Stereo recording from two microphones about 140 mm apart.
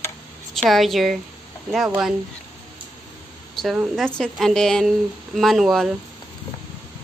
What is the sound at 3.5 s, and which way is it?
A woman's voice, 5° right (ahead or behind).